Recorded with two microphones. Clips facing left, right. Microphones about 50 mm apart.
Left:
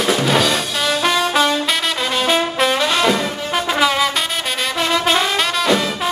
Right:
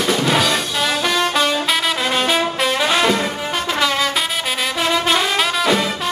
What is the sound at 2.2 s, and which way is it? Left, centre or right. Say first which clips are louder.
Brass instrument: left 5 dB; centre.